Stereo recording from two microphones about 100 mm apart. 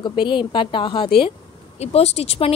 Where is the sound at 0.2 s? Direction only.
55° left (ahead or behind).